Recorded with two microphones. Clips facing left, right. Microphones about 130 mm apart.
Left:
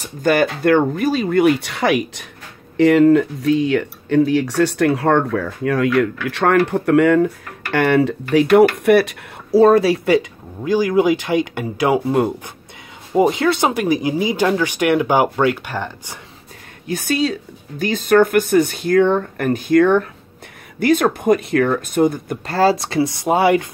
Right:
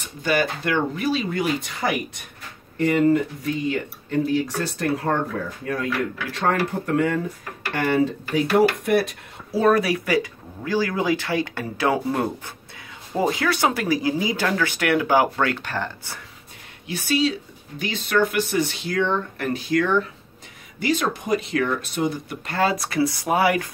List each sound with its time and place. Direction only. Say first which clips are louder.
0.0 s speech: left 6 dB; 50° left (ahead or behind); by 9.1 s 75° left (ahead or behind)
9.5 s speech: left 7 dB; 30° left (ahead or behind); by 16.2 s 15° left (ahead or behind)
16.8 s speech: left 3 dB; 50° left (ahead or behind)
22.6 s speech: left 5 dB; 30° left (ahead or behind)